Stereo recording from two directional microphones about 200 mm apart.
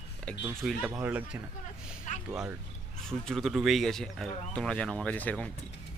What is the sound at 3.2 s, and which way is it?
Speech, centre (ahead or behind).